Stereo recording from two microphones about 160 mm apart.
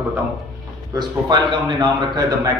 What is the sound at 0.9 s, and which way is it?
A man's voice, 25° right (ahead or behind).